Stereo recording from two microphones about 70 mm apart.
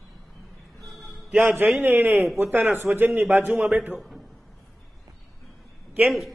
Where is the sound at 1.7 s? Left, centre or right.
Right.